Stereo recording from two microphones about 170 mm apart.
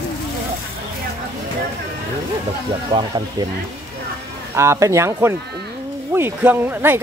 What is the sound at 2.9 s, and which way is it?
Speech, 30° right (ahead or behind).